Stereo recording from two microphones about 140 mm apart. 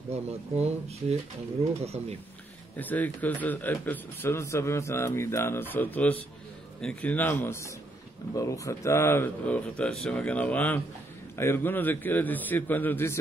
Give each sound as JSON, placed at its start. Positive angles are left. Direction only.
{"t": 0.1, "sound": "speech", "side_deg": -50}
{"t": 2.8, "sound": "a man's voice", "side_deg": 10}